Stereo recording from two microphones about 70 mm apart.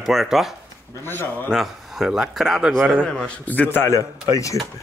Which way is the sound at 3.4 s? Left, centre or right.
Left.